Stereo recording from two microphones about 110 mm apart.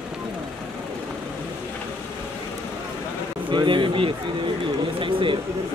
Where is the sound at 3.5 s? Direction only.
50° right (ahead or behind).